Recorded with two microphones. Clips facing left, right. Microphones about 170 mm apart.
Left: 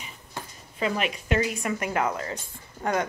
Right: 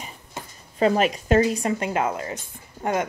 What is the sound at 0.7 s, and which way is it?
Speech, 40° right (ahead or behind).